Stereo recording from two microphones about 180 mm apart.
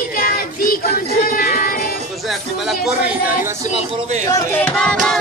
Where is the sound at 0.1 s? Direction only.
50° left (ahead or behind).